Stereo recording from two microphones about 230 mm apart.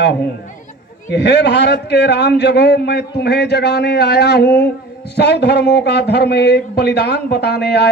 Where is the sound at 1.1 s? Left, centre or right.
Left.